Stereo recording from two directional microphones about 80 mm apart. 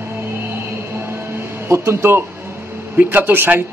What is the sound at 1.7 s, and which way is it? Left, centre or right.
Speech, right.